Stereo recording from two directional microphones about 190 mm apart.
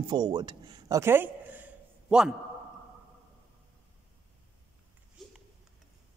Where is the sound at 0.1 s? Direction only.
20° right (ahead or behind); by 2.3 s 5° right (ahead or behind).